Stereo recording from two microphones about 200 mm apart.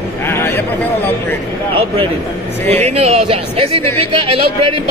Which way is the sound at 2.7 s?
30° right (ahead or behind).